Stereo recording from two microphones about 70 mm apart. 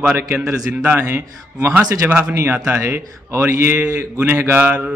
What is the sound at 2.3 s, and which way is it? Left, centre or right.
A man's voice, right.